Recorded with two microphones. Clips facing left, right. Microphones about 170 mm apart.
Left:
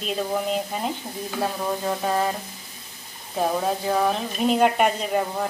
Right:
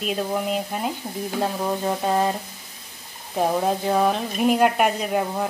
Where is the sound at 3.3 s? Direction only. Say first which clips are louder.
Right 2 dB; 15° right (ahead or behind).